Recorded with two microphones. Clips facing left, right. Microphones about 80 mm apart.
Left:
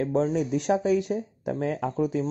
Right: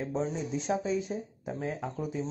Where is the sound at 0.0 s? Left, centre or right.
Left.